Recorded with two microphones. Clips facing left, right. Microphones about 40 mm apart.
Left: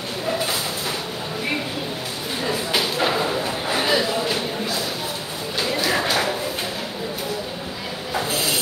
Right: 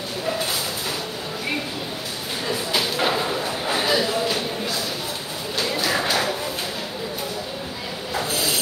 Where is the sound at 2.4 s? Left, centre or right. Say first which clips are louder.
Left 1 dB; centre.